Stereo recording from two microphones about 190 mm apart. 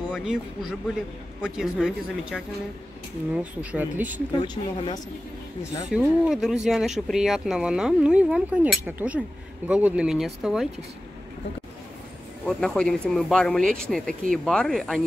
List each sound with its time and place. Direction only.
0.1 s speech: 5° right (ahead or behind)
4.4 s speech: 25° left (ahead or behind)
5.9 s speech: 5° right (ahead or behind)
12.4 s speech: 5° left (ahead or behind)